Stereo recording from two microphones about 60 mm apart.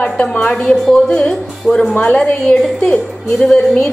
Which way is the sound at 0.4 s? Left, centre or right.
Centre.